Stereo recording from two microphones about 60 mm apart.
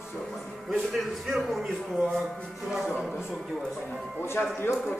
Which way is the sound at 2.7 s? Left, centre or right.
Centre.